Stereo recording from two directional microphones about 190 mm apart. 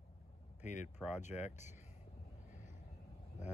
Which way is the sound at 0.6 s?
40° left (ahead or behind).